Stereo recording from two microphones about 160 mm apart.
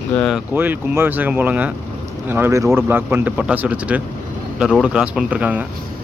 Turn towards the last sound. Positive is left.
turn(degrees=-10)  # may be behind; listen again after turning